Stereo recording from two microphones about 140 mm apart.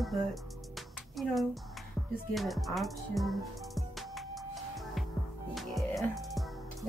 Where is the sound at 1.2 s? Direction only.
Centre (ahead or behind).